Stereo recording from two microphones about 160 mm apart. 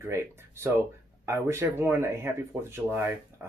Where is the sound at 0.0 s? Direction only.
15° right (ahead or behind).